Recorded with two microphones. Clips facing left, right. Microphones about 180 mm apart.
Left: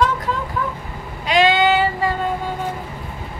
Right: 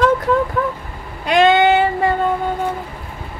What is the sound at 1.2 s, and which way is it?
Speech, 55° right (ahead or behind).